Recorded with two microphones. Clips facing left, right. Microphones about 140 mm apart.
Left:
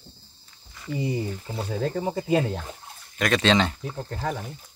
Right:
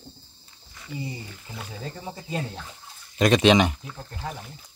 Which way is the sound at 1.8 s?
65° left (ahead or behind).